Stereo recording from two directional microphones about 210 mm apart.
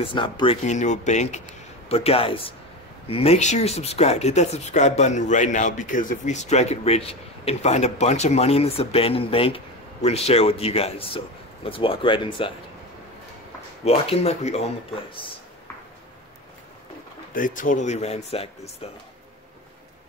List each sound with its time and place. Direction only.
0.0 s a man's voice: 25° left (ahead or behind)
0.7 s a man's voice: 35° left (ahead or behind)
13.8 s a man's voice: 30° left (ahead or behind)
17.3 s speech: 40° left (ahead or behind)